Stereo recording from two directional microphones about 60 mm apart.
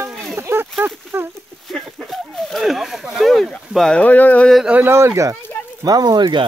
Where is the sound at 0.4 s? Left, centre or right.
Right.